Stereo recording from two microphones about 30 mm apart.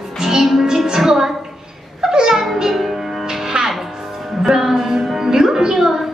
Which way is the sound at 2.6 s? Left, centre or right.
Centre.